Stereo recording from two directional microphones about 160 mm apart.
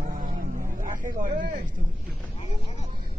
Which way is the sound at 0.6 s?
55° right (ahead or behind).